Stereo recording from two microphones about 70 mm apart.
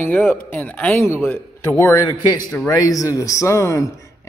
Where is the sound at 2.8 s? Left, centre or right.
Left.